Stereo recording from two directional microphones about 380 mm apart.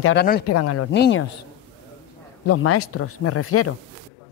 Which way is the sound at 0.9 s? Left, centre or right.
Left.